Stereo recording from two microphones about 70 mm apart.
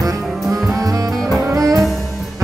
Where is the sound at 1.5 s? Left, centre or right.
Right.